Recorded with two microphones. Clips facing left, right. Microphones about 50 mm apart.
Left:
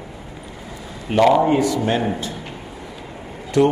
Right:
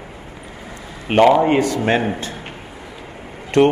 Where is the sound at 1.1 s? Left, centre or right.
Right.